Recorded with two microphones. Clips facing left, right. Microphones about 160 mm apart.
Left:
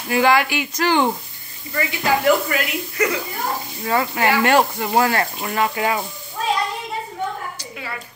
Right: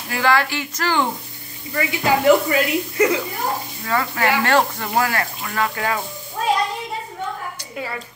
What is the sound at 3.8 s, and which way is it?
Speech, 20° left (ahead or behind).